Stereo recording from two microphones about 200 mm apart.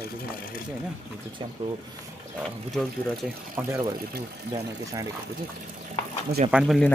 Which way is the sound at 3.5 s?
15° right (ahead or behind).